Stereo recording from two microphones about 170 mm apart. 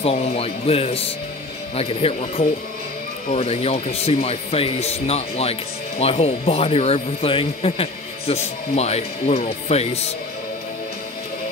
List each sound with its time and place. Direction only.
0.0 s speech: 35° left (ahead or behind)